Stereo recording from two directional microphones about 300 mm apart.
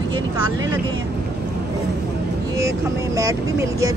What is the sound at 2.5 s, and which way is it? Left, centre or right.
Speech, centre.